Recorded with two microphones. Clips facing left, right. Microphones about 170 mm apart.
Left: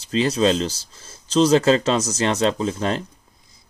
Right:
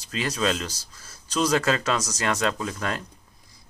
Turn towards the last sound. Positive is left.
turn(degrees=25)  # may be behind; listen again after turning